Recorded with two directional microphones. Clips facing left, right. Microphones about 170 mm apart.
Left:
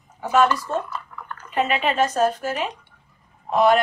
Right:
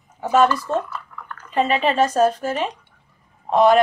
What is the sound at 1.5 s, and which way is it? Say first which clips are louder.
Speech: right 3 dB; 35° right (ahead or behind).